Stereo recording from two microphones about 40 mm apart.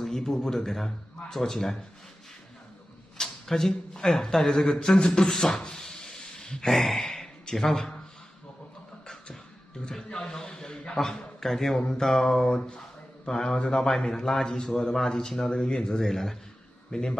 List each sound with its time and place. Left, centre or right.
0.0 s a man's voice: centre
3.2 s a man's voice: centre
5.5 s a sound: centre
6.7 s speech: centre
10.0 s a sound: left
11.1 s a man's voice: centre